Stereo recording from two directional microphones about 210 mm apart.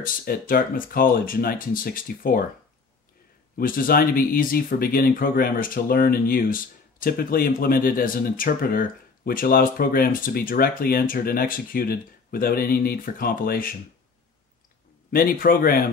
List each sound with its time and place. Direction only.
0.0 s speech: 45° left (ahead or behind)
3.5 s speech: 45° left (ahead or behind)
15.1 s speech: 40° left (ahead or behind)